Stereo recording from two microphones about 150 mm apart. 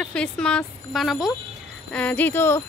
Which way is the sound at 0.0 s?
5° left (ahead or behind).